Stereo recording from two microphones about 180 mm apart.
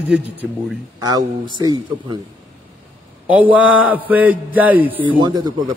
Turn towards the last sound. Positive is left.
turn(degrees=-25)  # may be behind; listen again after turning